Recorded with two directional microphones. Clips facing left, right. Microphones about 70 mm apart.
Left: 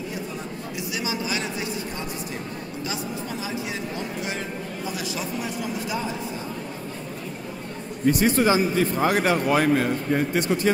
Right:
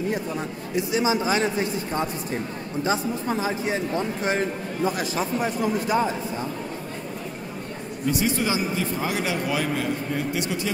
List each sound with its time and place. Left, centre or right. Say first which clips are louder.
0.7 s a man's voice: right 8 dB; right
8.1 s a man's voice: left 5 dB; left